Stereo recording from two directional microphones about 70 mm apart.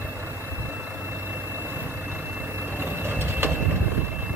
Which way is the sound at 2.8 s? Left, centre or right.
Right.